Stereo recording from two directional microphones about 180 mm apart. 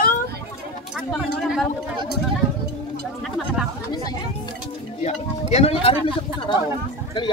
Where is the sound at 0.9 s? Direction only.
Centre (ahead or behind).